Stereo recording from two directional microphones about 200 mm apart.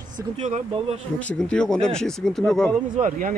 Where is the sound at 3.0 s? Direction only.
40° right (ahead or behind).